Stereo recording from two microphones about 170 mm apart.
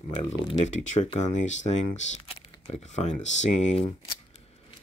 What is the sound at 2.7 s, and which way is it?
Speech, 40° left (ahead or behind).